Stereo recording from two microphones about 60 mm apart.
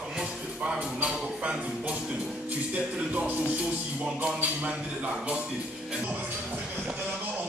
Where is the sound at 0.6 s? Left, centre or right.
Right.